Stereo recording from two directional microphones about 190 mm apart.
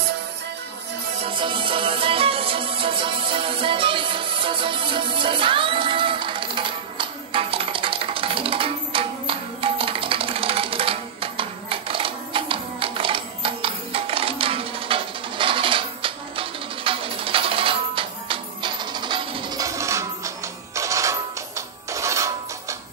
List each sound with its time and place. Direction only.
1.2 s music: 25° right (ahead or behind)